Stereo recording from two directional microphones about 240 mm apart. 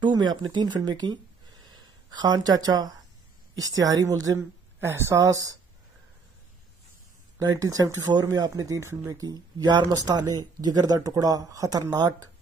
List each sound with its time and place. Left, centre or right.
0.0 s speech: centre
7.3 s speech: centre